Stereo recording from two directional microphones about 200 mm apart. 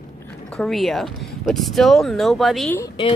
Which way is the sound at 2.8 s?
25° left (ahead or behind).